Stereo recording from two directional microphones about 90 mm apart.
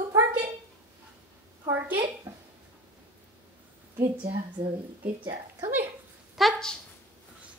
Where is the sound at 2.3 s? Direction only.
30° right (ahead or behind).